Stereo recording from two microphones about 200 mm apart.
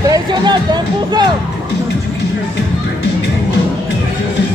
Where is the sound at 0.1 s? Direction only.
20° right (ahead or behind).